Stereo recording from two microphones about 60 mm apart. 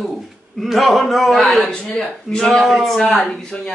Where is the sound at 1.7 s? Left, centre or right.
Centre.